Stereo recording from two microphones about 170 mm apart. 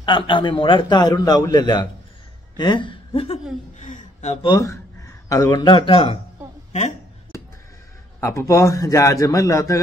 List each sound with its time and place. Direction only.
0.0 s a man's voice: 30° left (ahead or behind)
3.8 s speech: 45° left (ahead or behind)
4.5 s speech: 20° left (ahead or behind)
8.2 s a man's voice: 15° left (ahead or behind)